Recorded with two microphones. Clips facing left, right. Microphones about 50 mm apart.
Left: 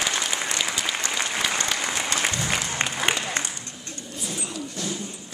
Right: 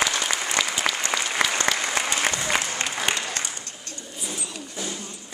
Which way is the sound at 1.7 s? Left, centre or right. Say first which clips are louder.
Right 4 dB; right.